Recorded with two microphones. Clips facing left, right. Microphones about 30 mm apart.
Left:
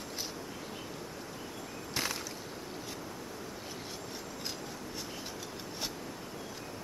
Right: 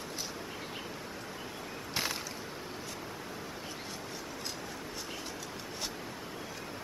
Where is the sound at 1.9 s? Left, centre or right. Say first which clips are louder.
Even; centre.